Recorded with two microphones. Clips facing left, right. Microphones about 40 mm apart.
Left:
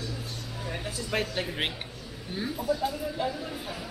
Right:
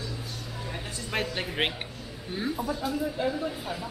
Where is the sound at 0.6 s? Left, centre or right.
Centre.